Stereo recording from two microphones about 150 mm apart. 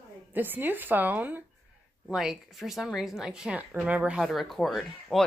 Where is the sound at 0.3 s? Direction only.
15° right (ahead or behind).